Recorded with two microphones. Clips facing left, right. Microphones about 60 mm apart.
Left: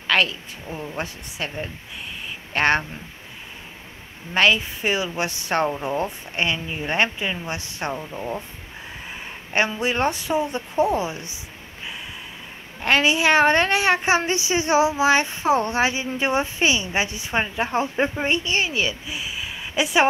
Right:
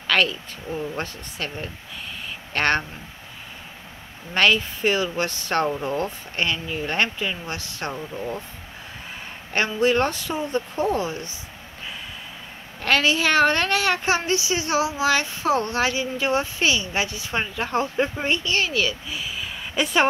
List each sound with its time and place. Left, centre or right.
0.1 s speech: centre
4.3 s speech: centre
9.5 s speech: centre
12.8 s a woman's voice: centre